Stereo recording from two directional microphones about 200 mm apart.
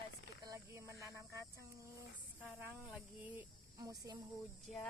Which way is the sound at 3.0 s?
10° right (ahead or behind).